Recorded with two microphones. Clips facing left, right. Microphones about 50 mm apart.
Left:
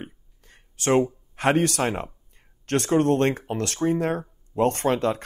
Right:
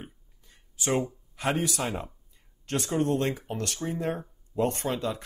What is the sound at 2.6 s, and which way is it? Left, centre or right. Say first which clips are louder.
Speech: left 7 dB; left.